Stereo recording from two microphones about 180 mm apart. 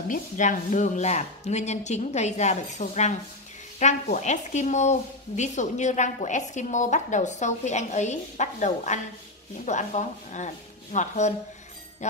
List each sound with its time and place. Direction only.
0.1 s speech: 45° left (ahead or behind)
12.0 s jingle bell: 40° left (ahead or behind)